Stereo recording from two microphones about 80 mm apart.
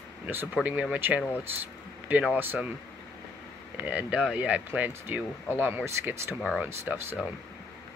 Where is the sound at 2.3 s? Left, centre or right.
Right.